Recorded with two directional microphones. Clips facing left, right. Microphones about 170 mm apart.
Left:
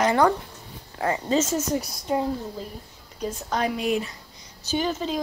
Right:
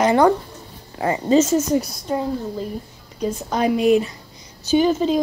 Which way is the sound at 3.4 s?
10° right (ahead or behind).